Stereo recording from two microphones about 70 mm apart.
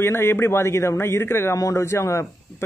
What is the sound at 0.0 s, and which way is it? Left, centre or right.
Speech, left.